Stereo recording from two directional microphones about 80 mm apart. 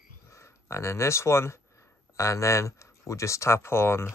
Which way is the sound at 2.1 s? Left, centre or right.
Left.